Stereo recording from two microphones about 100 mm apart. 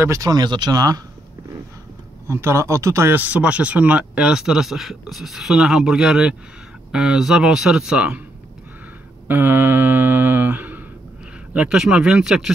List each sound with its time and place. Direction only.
0.0 s speech: 35° right (ahead or behind)
2.2 s speech: 25° right (ahead or behind); by 8.2 s 10° right (ahead or behind)
9.3 s speech: 20° right (ahead or behind)